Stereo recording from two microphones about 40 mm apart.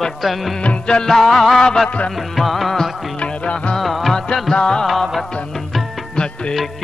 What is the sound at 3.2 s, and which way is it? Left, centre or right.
Music, left.